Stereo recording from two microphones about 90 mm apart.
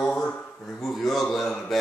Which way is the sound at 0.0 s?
10° left (ahead or behind).